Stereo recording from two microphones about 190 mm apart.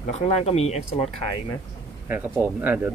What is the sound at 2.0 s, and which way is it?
Speech, 10° right (ahead or behind).